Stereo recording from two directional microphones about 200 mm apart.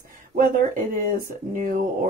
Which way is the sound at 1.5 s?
40° right (ahead or behind).